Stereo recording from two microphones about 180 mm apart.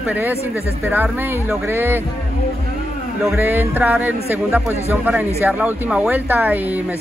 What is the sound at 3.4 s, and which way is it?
A man's voice, 10° right (ahead or behind).